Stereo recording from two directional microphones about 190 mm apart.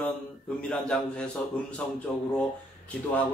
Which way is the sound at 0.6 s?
5° left (ahead or behind).